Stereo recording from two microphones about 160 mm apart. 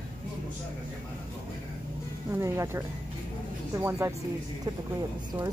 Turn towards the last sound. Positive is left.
turn(degrees=-15)  # may be behind; listen again after turning